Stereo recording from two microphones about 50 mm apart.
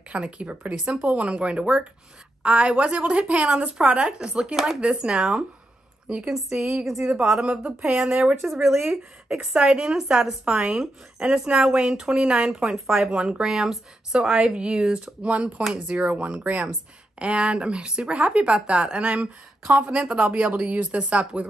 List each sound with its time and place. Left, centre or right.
0.1 s speech: right; by 9.4 s centre
9.5 s speech: centre
12.4 s speech: centre
15.2 s speech: right
19.7 s speech: right